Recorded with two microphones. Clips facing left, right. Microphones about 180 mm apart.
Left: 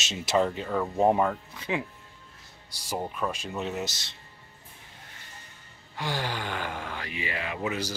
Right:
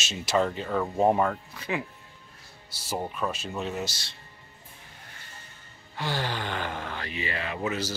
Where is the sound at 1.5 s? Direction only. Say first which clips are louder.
Left 1 dB; 20° left (ahead or behind).